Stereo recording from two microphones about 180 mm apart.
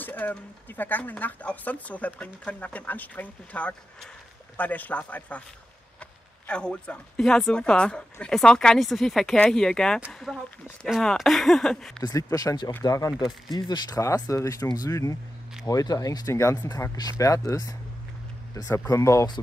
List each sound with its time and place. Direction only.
0.0 s speech: 10° left (ahead or behind)
12.0 s speech: 20° left (ahead or behind)